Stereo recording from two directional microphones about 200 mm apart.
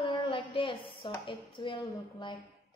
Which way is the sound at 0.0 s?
25° left (ahead or behind).